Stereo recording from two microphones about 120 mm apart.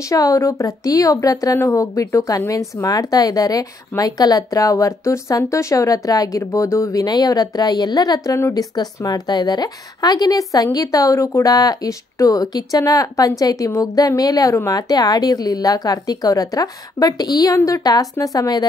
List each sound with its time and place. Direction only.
0.1 s speech: 30° left (ahead or behind)
8.7 s a woman's voice: 35° left (ahead or behind)